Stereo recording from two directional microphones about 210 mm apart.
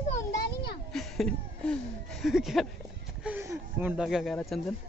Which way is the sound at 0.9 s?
Centre (ahead or behind).